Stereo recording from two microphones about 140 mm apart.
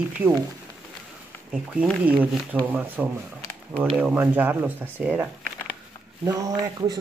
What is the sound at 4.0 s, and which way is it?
Speech, 10° right (ahead or behind).